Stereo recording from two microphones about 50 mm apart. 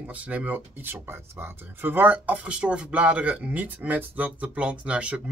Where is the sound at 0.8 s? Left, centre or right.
Right.